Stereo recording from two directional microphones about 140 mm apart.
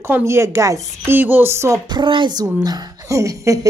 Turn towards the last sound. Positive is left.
turn(degrees=-25)  # may be behind; listen again after turning